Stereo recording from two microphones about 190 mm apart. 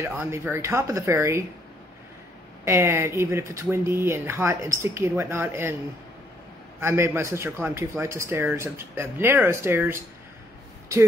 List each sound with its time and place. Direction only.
0.0 s speech: 10° right (ahead or behind)
2.6 s speech: 15° right (ahead or behind)
6.8 s speech: 15° right (ahead or behind)